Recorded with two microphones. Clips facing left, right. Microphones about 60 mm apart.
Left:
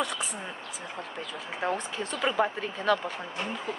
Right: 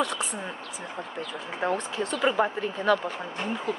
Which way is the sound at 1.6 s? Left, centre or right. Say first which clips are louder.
Right 3 dB; centre.